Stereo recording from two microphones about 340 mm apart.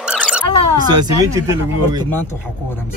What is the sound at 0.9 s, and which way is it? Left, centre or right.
Speech, centre.